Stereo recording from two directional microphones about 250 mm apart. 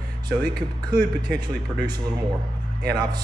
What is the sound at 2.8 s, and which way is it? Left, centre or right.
Speech, centre.